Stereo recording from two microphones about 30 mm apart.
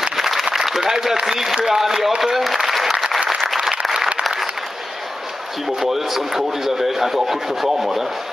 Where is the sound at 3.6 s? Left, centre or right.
Centre.